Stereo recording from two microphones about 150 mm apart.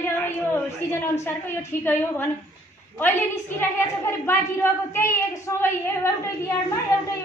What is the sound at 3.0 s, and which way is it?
A woman's voice, 15° left (ahead or behind).